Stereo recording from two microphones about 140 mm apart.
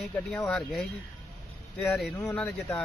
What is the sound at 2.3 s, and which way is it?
Speech, 5° left (ahead or behind).